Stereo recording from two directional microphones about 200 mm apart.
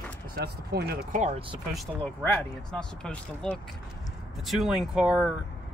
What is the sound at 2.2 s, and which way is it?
Speech, 5° left (ahead or behind).